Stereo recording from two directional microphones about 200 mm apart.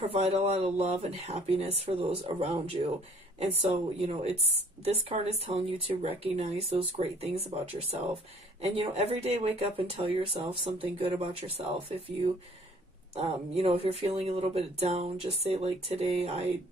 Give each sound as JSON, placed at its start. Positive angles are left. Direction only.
{"t": 0.0, "sound": "speech", "side_deg": -30}
{"t": 4.0, "sound": "speech", "side_deg": -30}
{"t": 13.1, "sound": "speech", "side_deg": -30}